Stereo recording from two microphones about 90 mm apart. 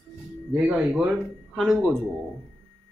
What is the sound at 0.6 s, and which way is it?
Speech, 10° right (ahead or behind).